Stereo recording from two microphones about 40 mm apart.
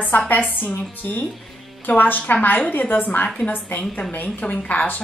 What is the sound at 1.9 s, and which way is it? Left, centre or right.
A woman's voice, left.